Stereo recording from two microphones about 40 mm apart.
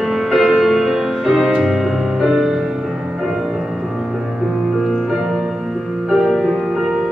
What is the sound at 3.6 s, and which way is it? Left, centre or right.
Music, centre.